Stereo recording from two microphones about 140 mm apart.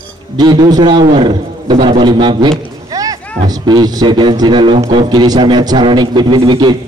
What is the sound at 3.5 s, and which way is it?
A man's voice, 30° right (ahead or behind).